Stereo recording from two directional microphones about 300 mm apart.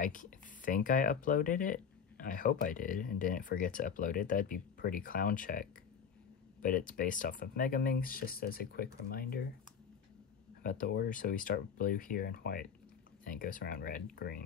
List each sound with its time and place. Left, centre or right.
0.0 s speech: left
10.6 s speech: left